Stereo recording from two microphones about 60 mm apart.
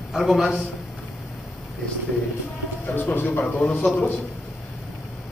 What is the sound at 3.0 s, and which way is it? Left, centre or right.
A man's voice, left.